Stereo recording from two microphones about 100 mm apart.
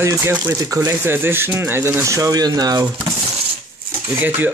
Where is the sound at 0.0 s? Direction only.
25° right (ahead or behind).